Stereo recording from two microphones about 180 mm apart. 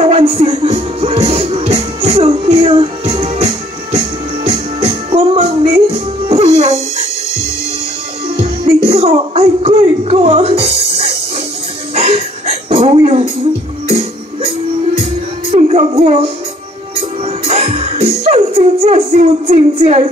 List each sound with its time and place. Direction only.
0.0 s music: 35° right (ahead or behind)
4.5 s music: 30° right (ahead or behind)
8.9 s a sound: 35° right (ahead or behind)
11.9 s music: 35° right (ahead or behind)
15.5 s music: 35° right (ahead or behind)